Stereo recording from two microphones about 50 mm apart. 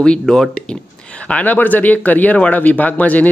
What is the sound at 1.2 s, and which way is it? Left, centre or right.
Speech, left.